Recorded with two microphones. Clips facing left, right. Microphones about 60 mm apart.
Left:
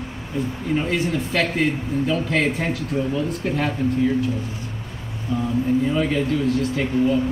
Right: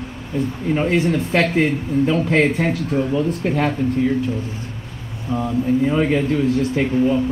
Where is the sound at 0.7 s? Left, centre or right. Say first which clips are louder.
Right 5 dB; right.